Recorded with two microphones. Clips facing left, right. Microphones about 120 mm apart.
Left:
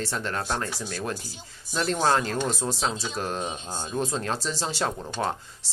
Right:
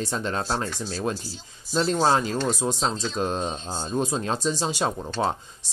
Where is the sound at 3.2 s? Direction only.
20° right (ahead or behind).